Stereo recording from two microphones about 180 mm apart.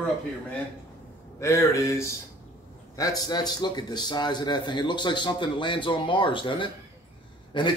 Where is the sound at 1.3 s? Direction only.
15° left (ahead or behind).